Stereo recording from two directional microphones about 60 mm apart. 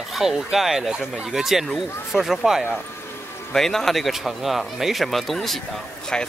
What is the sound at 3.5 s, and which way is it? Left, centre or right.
Speech, centre.